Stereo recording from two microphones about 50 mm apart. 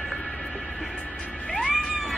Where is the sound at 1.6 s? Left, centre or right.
Centre.